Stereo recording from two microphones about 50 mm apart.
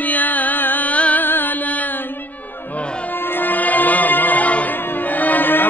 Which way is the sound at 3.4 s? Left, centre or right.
Left.